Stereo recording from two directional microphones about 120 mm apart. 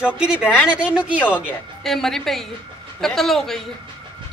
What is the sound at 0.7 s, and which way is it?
Speech, 10° right (ahead or behind).